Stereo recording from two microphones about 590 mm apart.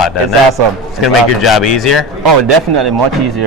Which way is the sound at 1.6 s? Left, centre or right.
Left.